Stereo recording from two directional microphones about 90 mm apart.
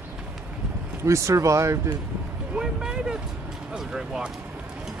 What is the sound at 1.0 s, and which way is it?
Speech, 35° right (ahead or behind).